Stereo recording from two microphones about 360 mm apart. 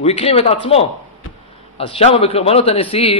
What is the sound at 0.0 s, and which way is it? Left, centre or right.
A man's voice, centre.